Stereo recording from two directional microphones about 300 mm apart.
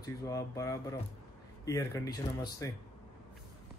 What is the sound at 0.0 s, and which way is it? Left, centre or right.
Speech, centre.